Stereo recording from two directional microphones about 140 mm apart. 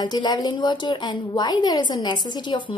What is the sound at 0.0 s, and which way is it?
A woman's voice, 30° left (ahead or behind).